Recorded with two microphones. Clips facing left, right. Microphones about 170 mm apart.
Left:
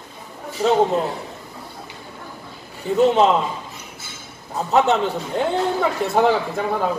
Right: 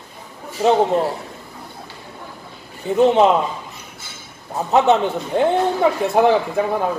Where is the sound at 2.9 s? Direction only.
20° right (ahead or behind).